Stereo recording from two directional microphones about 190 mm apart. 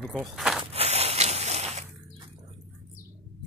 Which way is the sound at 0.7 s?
35° right (ahead or behind).